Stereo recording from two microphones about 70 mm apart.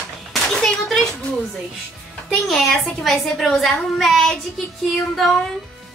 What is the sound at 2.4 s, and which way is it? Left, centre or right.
A woman's voice, centre.